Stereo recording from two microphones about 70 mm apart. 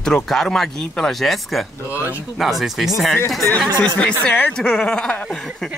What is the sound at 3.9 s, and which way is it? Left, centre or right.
Speech, centre.